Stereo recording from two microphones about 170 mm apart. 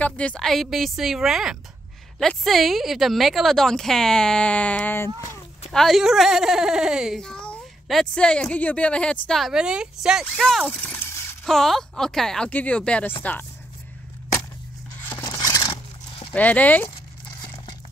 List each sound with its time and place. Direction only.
0.0 s a child's voice: 10° left (ahead or behind)
11.4 s a child's voice: centre (ahead or behind)
15.0 s a sound: 20° left (ahead or behind)
16.3 s speech: 10° left (ahead or behind)